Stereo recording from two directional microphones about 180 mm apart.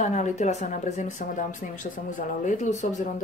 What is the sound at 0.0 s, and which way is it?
Speech, 40° left (ahead or behind).